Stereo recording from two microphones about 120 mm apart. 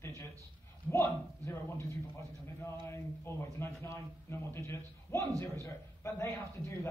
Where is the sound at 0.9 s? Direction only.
20° left (ahead or behind).